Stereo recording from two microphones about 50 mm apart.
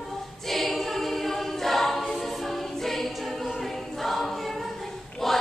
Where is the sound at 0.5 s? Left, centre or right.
Centre.